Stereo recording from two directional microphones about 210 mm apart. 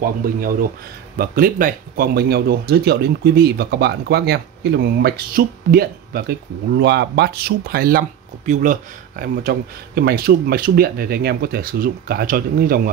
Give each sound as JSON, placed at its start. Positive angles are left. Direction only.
{"t": 0.0, "sound": "speech", "side_deg": -45}
{"t": 9.2, "sound": "speech", "side_deg": -40}